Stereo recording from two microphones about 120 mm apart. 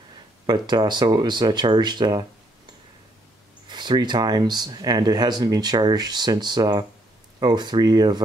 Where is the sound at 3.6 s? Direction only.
40° right (ahead or behind).